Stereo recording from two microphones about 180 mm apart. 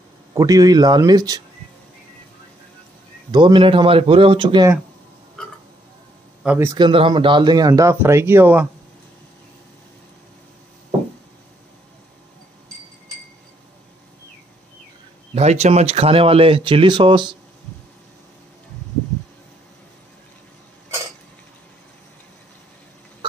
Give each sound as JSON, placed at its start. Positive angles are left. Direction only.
{"t": 0.3, "sound": "speech", "side_deg": -20}
{"t": 3.3, "sound": "speech", "side_deg": -25}
{"t": 6.4, "sound": "a man's voice", "side_deg": -10}
{"t": 6.7, "sound": "speech", "side_deg": -30}
{"t": 15.3, "sound": "speech", "side_deg": -35}